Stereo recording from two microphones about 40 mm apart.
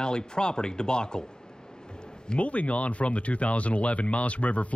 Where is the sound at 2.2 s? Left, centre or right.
Left.